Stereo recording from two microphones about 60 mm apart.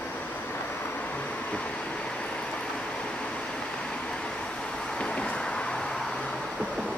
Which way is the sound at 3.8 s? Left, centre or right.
Centre.